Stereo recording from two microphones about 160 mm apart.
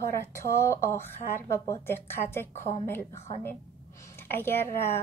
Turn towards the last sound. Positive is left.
turn(degrees=15)  # may be behind; listen again after turning